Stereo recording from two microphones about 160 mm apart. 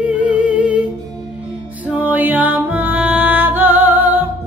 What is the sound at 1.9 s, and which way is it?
Music, 10° right (ahead or behind).